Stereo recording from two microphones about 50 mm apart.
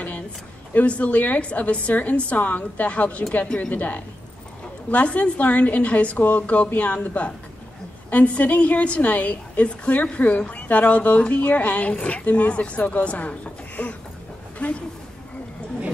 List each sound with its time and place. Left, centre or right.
0.7 s a woman's voice: left